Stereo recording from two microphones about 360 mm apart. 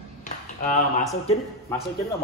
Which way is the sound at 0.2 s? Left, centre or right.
Left.